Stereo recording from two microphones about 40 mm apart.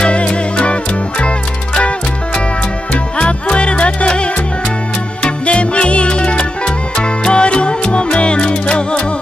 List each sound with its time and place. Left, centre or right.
0.0 s music: left